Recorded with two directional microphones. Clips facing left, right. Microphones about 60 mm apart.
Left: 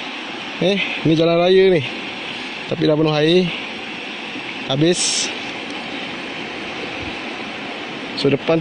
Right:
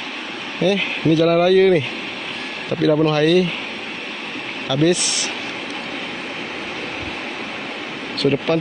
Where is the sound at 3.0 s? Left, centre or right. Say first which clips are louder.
Left 1 dB; right.